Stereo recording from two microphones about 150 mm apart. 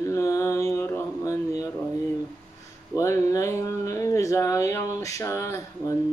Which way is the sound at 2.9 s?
20° left (ahead or behind).